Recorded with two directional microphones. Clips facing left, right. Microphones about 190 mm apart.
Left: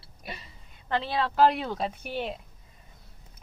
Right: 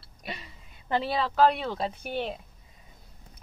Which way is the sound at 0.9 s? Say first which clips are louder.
Right 1 dB; 10° right (ahead or behind).